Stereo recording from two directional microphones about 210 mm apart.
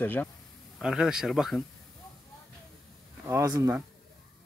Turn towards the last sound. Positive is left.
turn(degrees=-10)  # may be behind; listen again after turning